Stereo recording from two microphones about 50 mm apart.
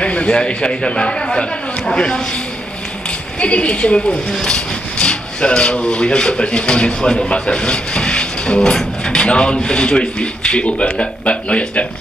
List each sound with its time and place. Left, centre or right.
0.0 s speech: left
3.3 s speech: left